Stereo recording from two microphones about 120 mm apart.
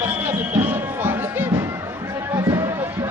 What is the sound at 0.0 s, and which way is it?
Basketball bounce, 15° right (ahead or behind).